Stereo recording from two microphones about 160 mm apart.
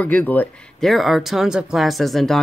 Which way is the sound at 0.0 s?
10° left (ahead or behind).